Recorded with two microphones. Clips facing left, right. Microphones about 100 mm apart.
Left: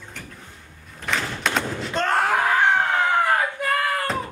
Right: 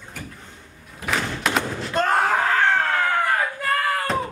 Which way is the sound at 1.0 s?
5° right (ahead or behind).